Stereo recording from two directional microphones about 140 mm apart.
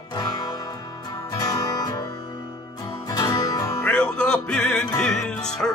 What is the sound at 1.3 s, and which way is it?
Music, 30° left (ahead or behind).